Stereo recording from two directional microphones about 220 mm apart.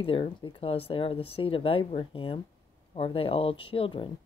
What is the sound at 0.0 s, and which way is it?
Speech, 25° left (ahead or behind).